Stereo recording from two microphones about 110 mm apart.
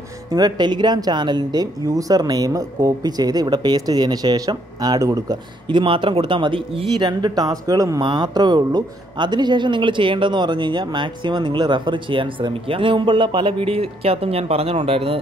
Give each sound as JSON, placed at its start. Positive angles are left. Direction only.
{"t": 0.3, "sound": "speech", "side_deg": -40}
{"t": 5.7, "sound": "speech", "side_deg": -50}
{"t": 8.0, "sound": "speech", "side_deg": -45}